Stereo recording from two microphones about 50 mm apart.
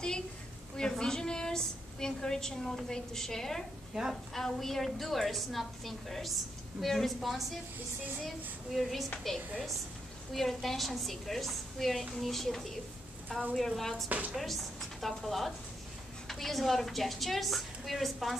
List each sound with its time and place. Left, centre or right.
0.7 s a woman's voice: centre
3.9 s a woman's voice: centre
4.3 s a woman's voice: centre
9.3 s a woman's voice: centre
14.0 s speech: right
14.4 s a woman's voice: centre